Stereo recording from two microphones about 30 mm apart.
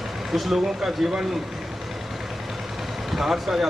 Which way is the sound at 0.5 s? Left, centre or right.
Centre.